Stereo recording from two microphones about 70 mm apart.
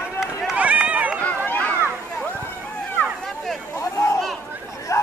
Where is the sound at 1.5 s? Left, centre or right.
Left.